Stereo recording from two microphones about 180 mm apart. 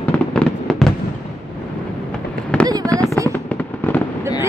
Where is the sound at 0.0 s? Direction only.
5° left (ahead or behind).